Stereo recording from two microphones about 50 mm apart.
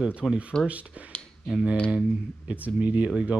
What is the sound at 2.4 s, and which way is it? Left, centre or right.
Speech, right.